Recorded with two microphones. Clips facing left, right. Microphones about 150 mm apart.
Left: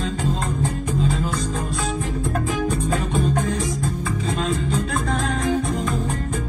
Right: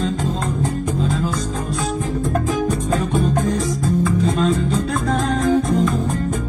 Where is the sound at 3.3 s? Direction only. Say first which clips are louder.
Right 3 dB; 40° right (ahead or behind).